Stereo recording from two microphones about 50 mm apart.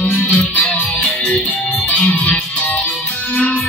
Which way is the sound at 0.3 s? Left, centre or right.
Left.